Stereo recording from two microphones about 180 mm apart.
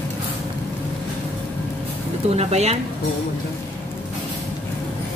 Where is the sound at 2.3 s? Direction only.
35° right (ahead or behind).